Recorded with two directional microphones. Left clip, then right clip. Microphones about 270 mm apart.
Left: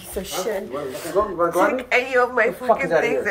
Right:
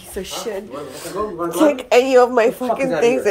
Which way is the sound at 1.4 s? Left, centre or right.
Right.